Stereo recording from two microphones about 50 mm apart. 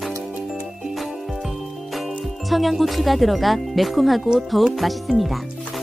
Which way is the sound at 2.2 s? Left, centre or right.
Centre.